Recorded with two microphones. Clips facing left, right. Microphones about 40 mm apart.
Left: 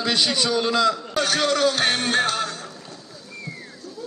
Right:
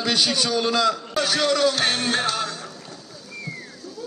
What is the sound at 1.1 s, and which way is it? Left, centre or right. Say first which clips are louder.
Speech: left 1 dB; left.